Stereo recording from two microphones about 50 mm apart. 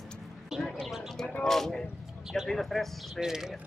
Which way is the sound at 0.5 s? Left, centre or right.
Centre.